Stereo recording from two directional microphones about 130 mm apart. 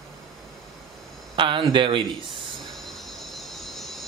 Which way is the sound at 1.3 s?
40° right (ahead or behind).